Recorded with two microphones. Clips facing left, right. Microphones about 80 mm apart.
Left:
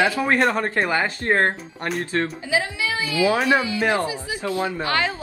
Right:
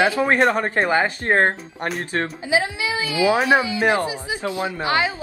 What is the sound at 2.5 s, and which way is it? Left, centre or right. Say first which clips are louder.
A woman's voice: right 3 dB; centre.